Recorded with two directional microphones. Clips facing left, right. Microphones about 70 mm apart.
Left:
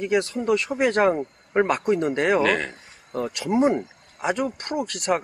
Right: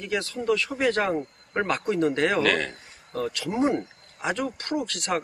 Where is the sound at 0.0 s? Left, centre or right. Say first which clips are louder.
Left 5 dB; left.